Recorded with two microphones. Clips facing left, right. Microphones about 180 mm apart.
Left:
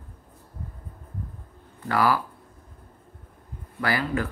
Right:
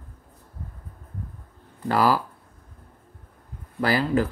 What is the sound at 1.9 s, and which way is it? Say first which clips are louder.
Speech: right 2 dB; 30° right (ahead or behind).